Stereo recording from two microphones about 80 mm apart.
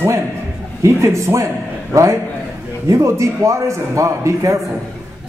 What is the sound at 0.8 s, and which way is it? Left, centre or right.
A man's voice, right.